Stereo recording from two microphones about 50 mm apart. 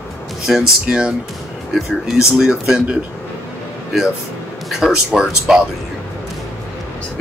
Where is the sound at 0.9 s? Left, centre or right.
Centre.